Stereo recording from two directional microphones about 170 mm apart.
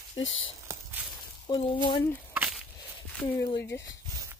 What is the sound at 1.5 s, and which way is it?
Speech, 30° left (ahead or behind).